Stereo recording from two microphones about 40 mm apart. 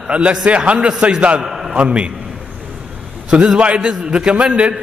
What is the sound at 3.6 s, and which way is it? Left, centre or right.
A man's voice, right.